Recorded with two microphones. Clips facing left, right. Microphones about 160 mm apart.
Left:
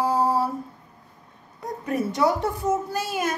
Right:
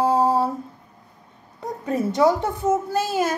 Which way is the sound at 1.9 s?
25° right (ahead or behind).